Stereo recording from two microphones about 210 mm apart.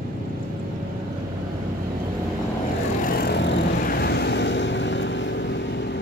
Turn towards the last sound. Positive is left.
turn(degrees=60)  # may be behind; listen again after turning